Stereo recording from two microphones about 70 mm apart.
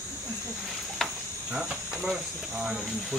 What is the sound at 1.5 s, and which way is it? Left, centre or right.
Cricket, centre.